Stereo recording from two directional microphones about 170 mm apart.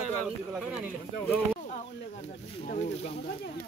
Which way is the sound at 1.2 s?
10° left (ahead or behind).